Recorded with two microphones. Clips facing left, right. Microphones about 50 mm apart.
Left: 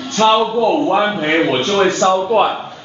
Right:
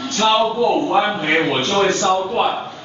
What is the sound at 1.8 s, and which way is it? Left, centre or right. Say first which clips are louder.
Speech: left 3 dB; left.